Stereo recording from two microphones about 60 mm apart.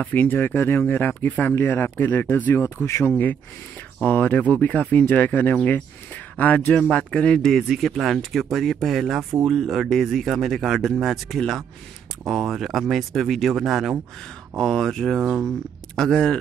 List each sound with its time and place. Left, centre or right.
0.1 s speech: left
4.0 s speech: left
7.4 s speech: centre